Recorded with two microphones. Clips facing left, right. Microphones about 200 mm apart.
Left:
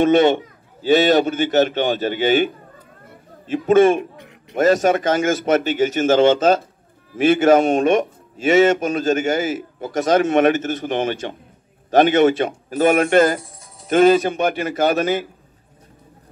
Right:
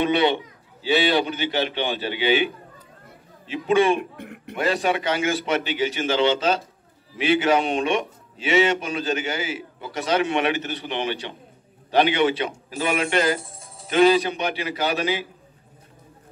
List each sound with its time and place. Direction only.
0.0 s a man's voice: 45° left (ahead or behind)
4.2 s a sound: 55° right (ahead or behind)
4.6 s a man's voice: 45° left (ahead or behind)